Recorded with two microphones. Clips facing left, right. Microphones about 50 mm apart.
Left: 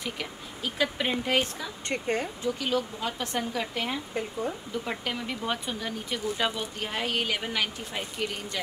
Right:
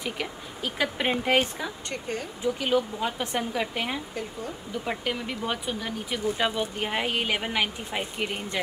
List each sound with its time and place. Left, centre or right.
0.0 s speech: centre
1.9 s speech: left
2.4 s speech: centre